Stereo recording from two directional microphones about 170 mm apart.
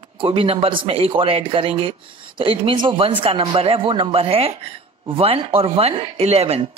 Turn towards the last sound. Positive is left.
turn(degrees=-35)  # may be behind; listen again after turning